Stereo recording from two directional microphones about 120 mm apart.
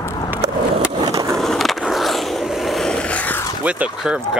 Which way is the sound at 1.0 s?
25° right (ahead or behind).